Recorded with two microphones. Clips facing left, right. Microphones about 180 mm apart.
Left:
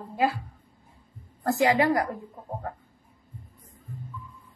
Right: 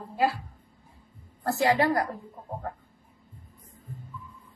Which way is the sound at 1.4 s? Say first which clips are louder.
Left 2 dB; 15° left (ahead or behind).